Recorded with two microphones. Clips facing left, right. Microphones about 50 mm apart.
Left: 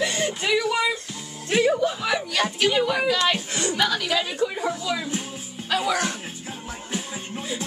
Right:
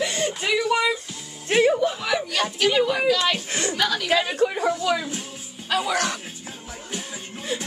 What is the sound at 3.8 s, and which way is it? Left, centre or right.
Speech, centre.